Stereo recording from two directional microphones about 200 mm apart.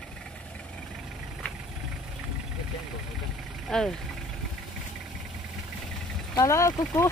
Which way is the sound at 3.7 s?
5° left (ahead or behind).